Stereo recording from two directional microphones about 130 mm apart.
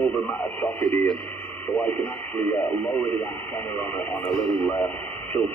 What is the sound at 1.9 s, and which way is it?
Speech, 15° left (ahead or behind).